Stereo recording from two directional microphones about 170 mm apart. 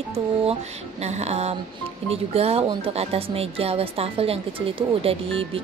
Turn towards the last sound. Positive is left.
turn(degrees=-35)  # may be behind; listen again after turning